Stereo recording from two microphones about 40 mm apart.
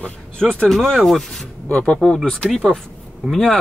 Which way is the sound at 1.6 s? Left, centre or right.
Left.